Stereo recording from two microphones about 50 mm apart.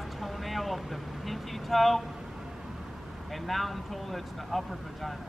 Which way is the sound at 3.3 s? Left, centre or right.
Centre.